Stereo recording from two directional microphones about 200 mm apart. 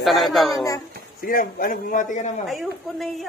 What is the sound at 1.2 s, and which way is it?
A man's voice, 45° left (ahead or behind).